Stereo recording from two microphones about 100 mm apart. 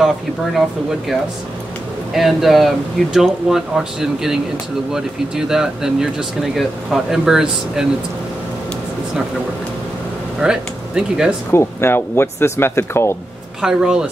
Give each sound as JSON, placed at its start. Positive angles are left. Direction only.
{"t": 2.1, "sound": "speech", "side_deg": 0}
{"t": 10.4, "sound": "speech", "side_deg": -10}
{"t": 11.5, "sound": "speech", "side_deg": 25}
{"t": 13.6, "sound": "speech", "side_deg": -5}